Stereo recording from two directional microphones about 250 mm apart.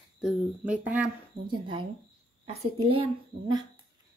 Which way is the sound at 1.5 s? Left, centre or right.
Centre.